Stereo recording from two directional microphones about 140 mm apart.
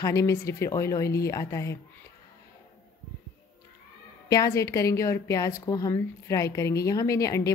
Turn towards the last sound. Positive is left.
turn(degrees=25)  # may be behind; listen again after turning